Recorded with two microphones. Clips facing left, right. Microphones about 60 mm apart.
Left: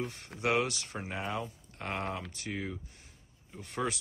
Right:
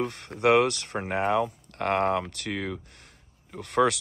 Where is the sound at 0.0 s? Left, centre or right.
Right.